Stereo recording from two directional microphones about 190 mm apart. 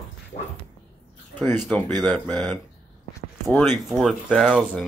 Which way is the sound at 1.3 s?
10° left (ahead or behind).